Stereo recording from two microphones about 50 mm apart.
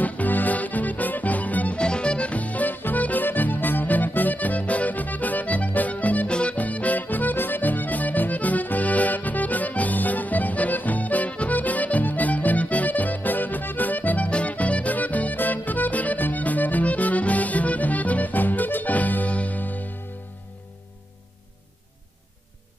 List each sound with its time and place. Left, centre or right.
0.0 s accordion: left
1.8 s music: centre
6.3 s accordion: left